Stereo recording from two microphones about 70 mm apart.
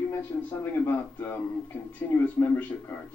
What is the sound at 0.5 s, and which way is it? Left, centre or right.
A woman's voice, left.